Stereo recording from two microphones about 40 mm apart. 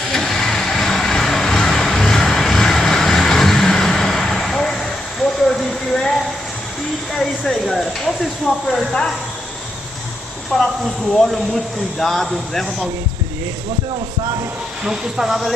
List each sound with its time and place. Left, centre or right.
0.1 s vehicle: centre
5.4 s a sound: centre
7.2 s a sound: centre
8.5 s speech: centre
11.2 s speech: centre
14.8 s speech: centre